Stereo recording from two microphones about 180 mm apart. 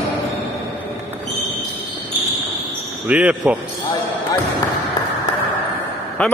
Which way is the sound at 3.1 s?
5° right (ahead or behind).